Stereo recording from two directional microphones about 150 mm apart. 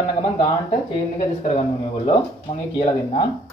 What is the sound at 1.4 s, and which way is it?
Speech, 50° left (ahead or behind).